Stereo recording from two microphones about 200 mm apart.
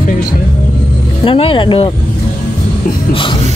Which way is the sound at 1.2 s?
25° left (ahead or behind).